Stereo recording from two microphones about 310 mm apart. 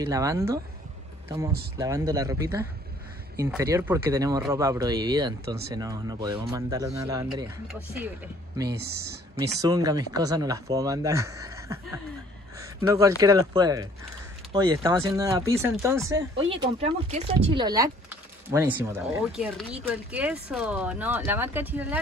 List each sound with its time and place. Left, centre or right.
0.0 s speech: centre
1.8 s speech: centre
8.6 s speech: right
9.4 s speech: centre